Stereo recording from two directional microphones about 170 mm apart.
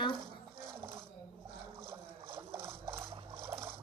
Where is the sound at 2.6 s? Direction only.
15° right (ahead or behind).